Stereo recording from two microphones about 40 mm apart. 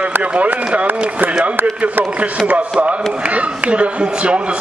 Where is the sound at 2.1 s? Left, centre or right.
Right.